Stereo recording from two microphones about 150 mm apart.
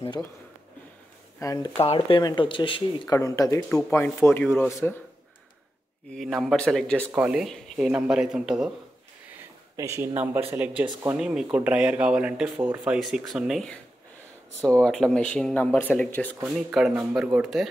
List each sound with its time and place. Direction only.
1.4 s speech: 20° left (ahead or behind)
1.8 s speech: 35° left (ahead or behind)
3.2 s speech: 20° left (ahead or behind)
6.1 s speech: centre (ahead or behind)
7.1 s speech: 10° right (ahead or behind)
7.4 s speech: centre (ahead or behind)
9.8 s speech: 20° right (ahead or behind); by 13.7 s centre (ahead or behind)
14.8 s speech: centre (ahead or behind)
16.4 s speech: centre (ahead or behind)